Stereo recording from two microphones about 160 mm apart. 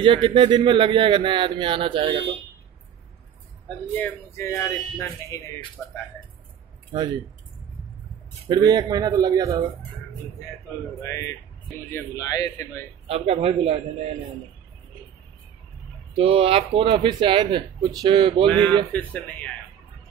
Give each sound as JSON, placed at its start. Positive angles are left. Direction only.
{"t": 0.0, "sound": "speech", "side_deg": -30}
{"t": 3.9, "sound": "speech", "side_deg": 15}
{"t": 5.8, "sound": "speech", "side_deg": 10}
{"t": 8.5, "sound": "a man's voice", "side_deg": -25}
{"t": 11.0, "sound": "speech", "side_deg": 20}
{"t": 13.0, "sound": "speech", "side_deg": -40}
{"t": 16.2, "sound": "speech", "side_deg": -35}
{"t": 18.5, "sound": "speech", "side_deg": 10}